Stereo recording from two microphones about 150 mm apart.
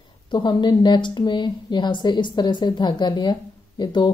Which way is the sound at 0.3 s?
30° left (ahead or behind).